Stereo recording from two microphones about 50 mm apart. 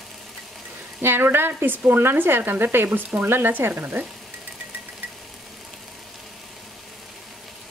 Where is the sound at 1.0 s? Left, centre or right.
Right.